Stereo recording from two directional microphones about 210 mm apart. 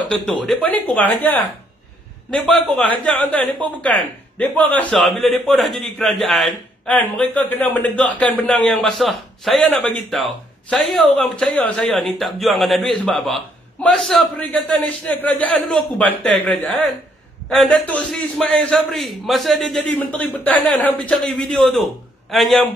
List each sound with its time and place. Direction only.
0.0 s a man's voice: 5° left (ahead or behind)